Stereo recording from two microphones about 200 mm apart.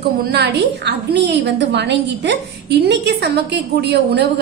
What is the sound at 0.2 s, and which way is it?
A woman's voice, 55° right (ahead or behind).